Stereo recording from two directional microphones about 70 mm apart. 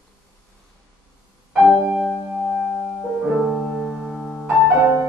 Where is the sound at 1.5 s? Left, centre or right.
Centre.